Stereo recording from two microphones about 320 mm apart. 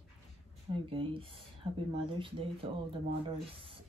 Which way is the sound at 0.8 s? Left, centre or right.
Centre.